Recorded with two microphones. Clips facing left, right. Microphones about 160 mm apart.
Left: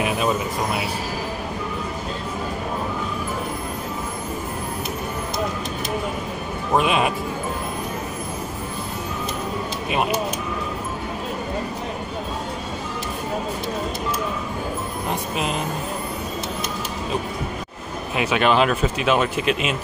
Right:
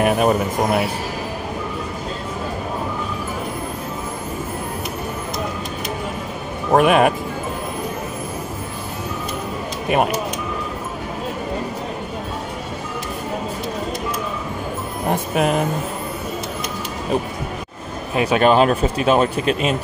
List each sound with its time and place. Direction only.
0.0 s speech: 55° right (ahead or behind)
6.7 s speech: 55° right (ahead or behind)
15.0 s speech: 55° right (ahead or behind)
18.1 s speech: 40° right (ahead or behind)